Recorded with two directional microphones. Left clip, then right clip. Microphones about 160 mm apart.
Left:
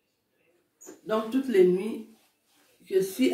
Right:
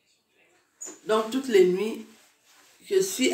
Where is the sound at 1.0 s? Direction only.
15° left (ahead or behind).